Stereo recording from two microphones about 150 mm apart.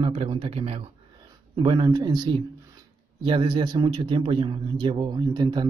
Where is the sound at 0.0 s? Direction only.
40° right (ahead or behind).